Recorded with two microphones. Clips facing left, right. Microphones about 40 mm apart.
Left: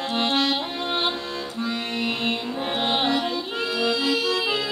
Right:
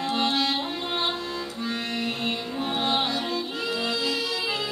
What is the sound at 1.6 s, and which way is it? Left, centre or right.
Music, left.